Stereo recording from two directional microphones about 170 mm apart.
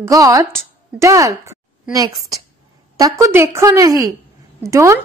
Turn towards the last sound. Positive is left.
turn(degrees=-15)  # may be behind; listen again after turning